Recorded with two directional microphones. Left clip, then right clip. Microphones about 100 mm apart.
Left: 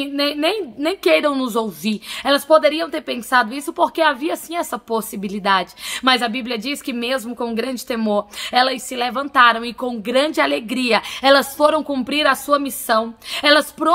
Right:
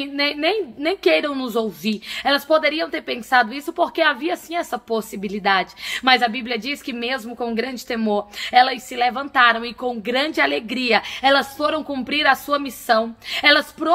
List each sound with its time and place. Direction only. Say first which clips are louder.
0.0 s a woman's voice: left 1 dB; 40° left (ahead or behind); by 11.7 s 60° left (ahead or behind)
11.7 s a woman's voice: left 3 dB; 40° left (ahead or behind)